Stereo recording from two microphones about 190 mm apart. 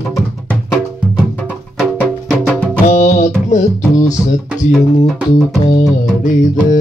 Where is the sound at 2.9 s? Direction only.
40° left (ahead or behind).